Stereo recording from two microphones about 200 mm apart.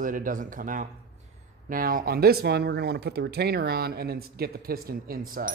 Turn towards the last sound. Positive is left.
turn(degrees=-45)  # may be behind; listen again after turning